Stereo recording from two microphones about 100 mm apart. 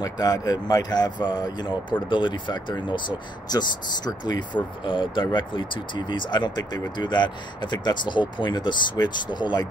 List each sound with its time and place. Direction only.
0.0 s speech: 40° left (ahead or behind)